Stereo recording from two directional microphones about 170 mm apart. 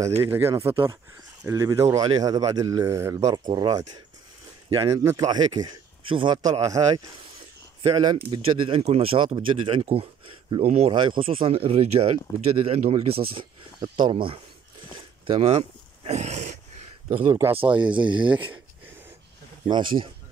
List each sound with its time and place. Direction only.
0.2 s speech: 15° right (ahead or behind); by 4.9 s 30° right (ahead or behind)
4.9 s speech: 20° right (ahead or behind)
15.0 s a sound: 30° right (ahead or behind)
16.1 s a sound: 40° right (ahead or behind)
17.3 s speech: 15° right (ahead or behind)
19.7 s speech: 30° right (ahead or behind)